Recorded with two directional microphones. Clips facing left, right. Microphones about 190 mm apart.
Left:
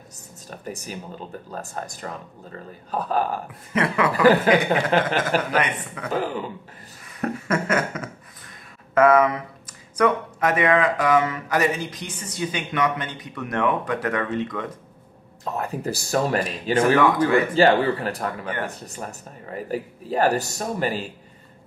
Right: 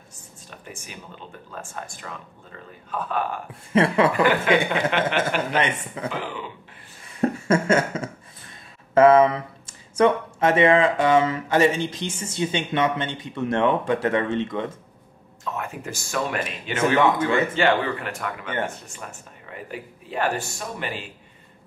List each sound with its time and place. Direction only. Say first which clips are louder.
0.5 s speech: left 7 dB; 40° left (ahead or behind)
3.7 s speech: right 4 dB; 30° right (ahead or behind)
4.1 s speech: left 3 dB; 35° left (ahead or behind)
5.5 s speech: even; 25° right (ahead or behind)
6.0 s speech: left 5 dB; 40° left (ahead or behind)
7.2 s speech: right 4 dB; 30° right (ahead or behind)
15.4 s speech: left 4 dB; 35° left (ahead or behind)
16.7 s speech: left 2 dB; 25° right (ahead or behind)
17.6 s speech: left 4 dB; 35° left (ahead or behind)